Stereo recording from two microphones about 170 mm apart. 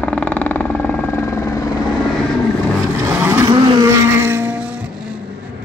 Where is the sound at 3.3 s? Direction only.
20° right (ahead or behind).